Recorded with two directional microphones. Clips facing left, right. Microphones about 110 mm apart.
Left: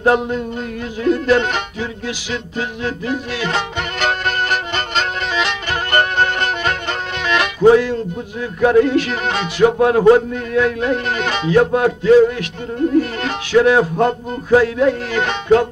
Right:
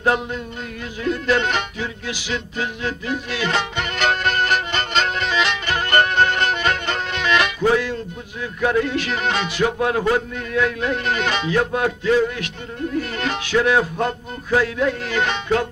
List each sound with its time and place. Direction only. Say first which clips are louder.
0.0 s speech: left 5 dB; 40° left (ahead or behind)
1.0 s music: left 5 dB; 40° left (ahead or behind)
7.6 s speech: left 8 dB; 35° left (ahead or behind)